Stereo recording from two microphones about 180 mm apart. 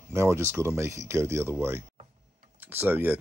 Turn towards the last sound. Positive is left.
turn(degrees=-10)  # may be behind; listen again after turning